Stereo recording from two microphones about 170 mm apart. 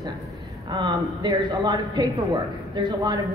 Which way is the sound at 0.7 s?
25° right (ahead or behind).